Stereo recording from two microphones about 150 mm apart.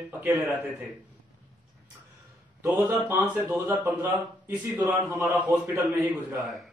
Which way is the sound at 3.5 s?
10° right (ahead or behind).